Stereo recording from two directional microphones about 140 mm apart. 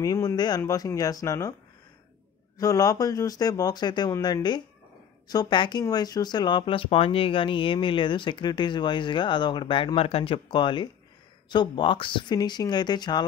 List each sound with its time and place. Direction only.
0.0 s speech: 25° left (ahead or behind)
2.6 s speech: 25° left (ahead or behind)